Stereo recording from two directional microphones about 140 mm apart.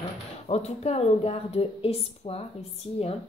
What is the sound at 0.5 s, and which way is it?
A woman's voice, 50° left (ahead or behind).